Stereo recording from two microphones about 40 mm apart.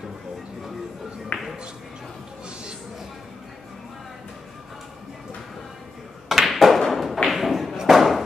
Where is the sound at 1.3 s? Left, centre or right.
Left.